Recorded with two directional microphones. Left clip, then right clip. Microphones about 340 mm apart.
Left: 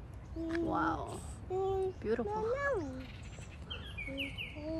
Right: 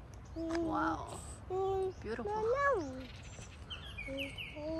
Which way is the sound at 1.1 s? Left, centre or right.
Right.